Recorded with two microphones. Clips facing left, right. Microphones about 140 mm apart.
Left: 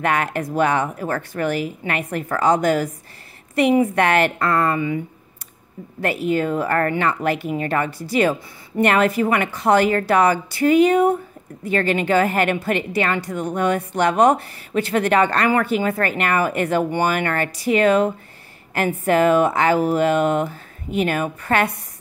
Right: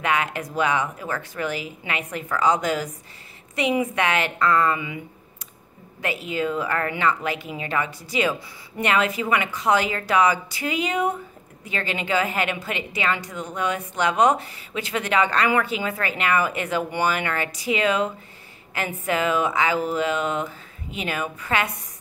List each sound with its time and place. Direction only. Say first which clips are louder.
0.0 s speech: left 3 dB; 50° left (ahead or behind)
4.4 s speech: left 1 dB; 40° left (ahead or behind)
5.9 s speech: left 6 dB; 55° left (ahead or behind)